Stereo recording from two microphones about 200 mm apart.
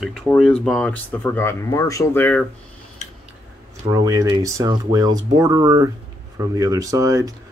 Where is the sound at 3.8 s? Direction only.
20° right (ahead or behind).